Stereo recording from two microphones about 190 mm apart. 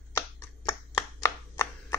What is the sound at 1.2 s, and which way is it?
Chopping, 15° left (ahead or behind).